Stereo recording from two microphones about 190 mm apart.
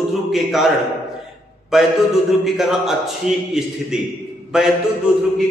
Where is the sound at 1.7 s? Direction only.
Centre (ahead or behind).